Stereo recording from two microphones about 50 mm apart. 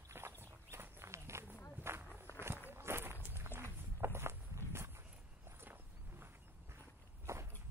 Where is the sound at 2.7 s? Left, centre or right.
Right.